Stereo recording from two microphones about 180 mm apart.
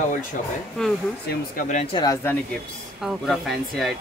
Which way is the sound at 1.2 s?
50° left (ahead or behind).